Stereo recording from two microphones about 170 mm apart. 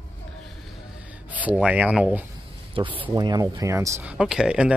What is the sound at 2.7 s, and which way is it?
Speech, 30° right (ahead or behind).